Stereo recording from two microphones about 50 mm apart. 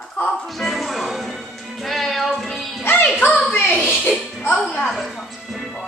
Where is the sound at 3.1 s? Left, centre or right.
Left.